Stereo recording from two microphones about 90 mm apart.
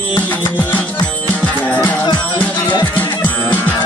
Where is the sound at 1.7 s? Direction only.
20° left (ahead or behind).